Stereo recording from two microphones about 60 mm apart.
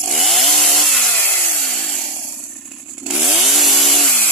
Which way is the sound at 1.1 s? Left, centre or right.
Left.